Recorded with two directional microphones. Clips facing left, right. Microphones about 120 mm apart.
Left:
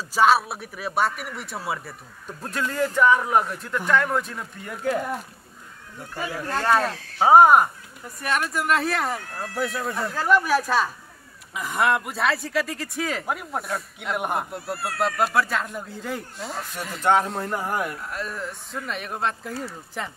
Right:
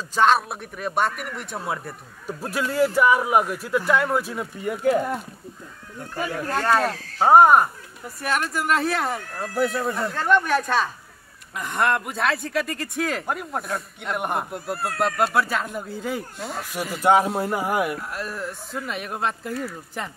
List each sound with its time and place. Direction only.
0.1 s speech: 5° left (ahead or behind)
6.1 s speech: centre (ahead or behind)